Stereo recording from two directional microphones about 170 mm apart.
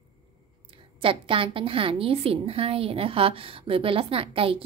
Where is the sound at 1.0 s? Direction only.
30° right (ahead or behind).